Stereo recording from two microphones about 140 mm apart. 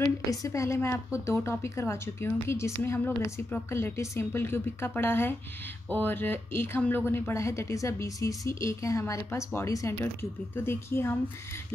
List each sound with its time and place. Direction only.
0.0 s a woman's voice: 25° left (ahead or behind)